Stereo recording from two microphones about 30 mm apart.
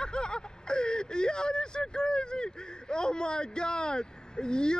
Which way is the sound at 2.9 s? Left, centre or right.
Left.